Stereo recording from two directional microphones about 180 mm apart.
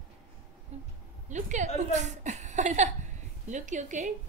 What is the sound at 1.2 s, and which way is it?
A woman's voice, 40° right (ahead or behind).